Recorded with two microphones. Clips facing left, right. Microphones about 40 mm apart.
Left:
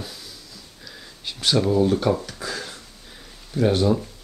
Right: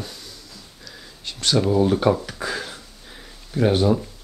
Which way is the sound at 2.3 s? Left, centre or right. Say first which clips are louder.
Right 3 dB; right.